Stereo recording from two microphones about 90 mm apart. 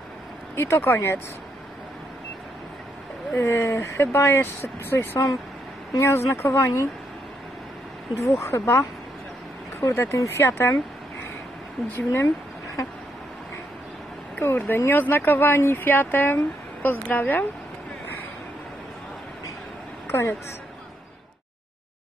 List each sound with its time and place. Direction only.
0.6 s speech: 25° left (ahead or behind)
3.3 s speech: 30° left (ahead or behind)
8.4 s speech: 30° left (ahead or behind)
11.9 s speech: 30° left (ahead or behind)
14.4 s speech: 25° left (ahead or behind)
20.1 s a woman's voice: 30° left (ahead or behind)